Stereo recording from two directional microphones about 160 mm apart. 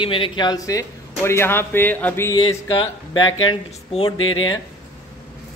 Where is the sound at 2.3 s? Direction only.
30° left (ahead or behind).